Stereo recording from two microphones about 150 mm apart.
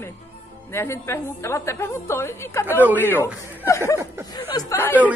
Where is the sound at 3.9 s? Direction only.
20° right (ahead or behind).